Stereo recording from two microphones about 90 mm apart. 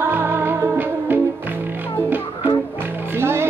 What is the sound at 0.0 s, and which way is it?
Music, 25° right (ahead or behind).